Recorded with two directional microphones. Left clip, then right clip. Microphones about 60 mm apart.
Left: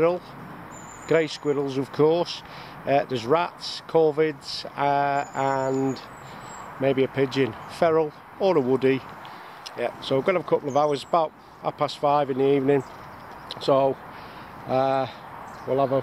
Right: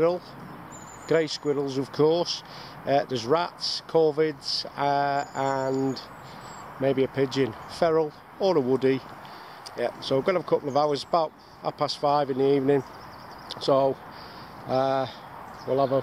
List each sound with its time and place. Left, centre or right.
1.0 s speech: centre
6.8 s speech: centre